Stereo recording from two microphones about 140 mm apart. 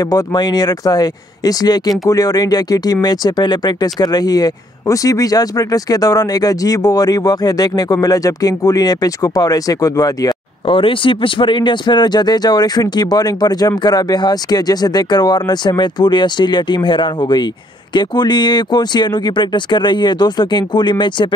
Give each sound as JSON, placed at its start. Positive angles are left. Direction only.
{"t": 0.0, "sound": "speech", "side_deg": 30}
{"t": 10.7, "sound": "speech", "side_deg": 40}